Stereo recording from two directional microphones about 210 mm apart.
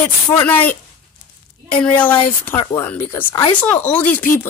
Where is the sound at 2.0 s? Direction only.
10° left (ahead or behind).